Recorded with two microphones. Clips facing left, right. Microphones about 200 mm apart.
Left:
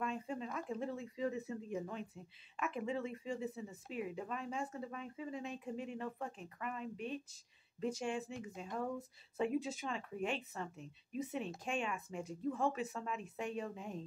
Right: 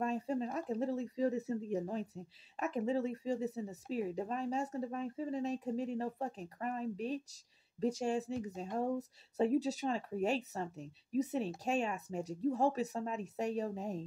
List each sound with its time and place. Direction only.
0.0 s speech: 40° right (ahead or behind)